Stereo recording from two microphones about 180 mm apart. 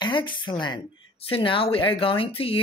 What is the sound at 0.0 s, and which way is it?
Speech, 25° left (ahead or behind).